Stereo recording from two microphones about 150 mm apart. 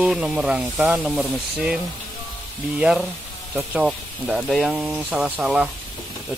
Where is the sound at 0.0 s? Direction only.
5° right (ahead or behind).